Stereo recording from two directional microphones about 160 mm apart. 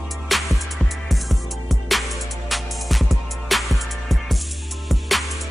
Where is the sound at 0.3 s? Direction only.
Centre (ahead or behind).